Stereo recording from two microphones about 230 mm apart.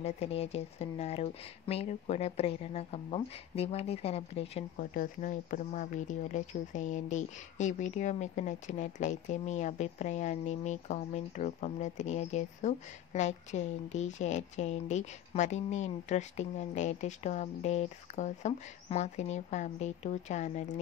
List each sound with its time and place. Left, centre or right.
0.0 s speech: left
4.7 s speech: left